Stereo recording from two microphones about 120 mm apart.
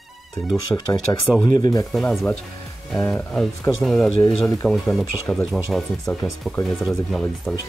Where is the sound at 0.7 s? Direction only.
15° left (ahead or behind); by 1.9 s 30° left (ahead or behind).